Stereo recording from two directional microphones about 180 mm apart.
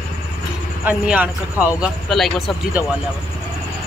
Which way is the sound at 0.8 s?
10° right (ahead or behind).